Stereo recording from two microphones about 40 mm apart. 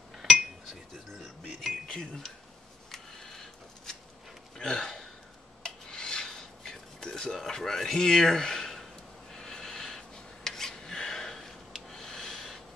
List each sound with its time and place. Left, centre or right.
0.2 s cutlery: centre
1.5 s music: centre
1.9 s speech: centre
2.9 s a sound: centre
4.6 s hiccup: centre
5.6 s filing: centre
6.2 s a sound: centre
9.3 s rub: centre
11.9 s snort: centre